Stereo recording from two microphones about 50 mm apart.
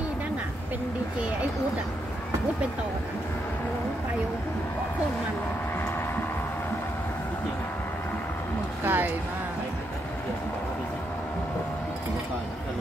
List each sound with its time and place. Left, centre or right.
8.8 s speech: right